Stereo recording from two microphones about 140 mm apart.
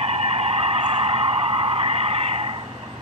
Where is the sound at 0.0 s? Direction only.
45° right (ahead or behind).